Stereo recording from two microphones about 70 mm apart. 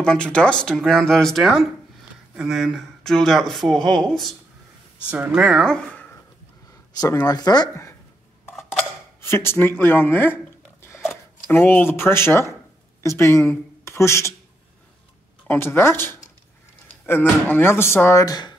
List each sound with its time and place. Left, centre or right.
0.0 s speech: centre
3.0 s speech: centre
5.0 s speech: right
5.3 s speech: centre
7.2 s speech: left
9.2 s speech: left
11.0 s a sound: centre
11.5 s speech: left
15.4 s speech: left
18.2 s speech: left